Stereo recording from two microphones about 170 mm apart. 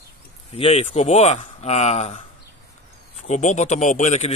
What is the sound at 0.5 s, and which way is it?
A man's voice, 35° left (ahead or behind).